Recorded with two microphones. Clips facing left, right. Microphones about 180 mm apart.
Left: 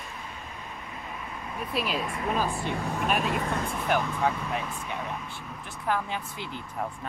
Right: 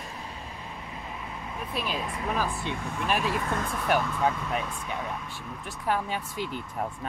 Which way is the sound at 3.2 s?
40° left (ahead or behind).